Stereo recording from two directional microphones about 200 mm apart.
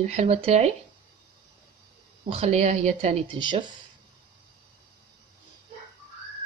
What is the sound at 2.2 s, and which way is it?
A woman's voice, 30° right (ahead or behind).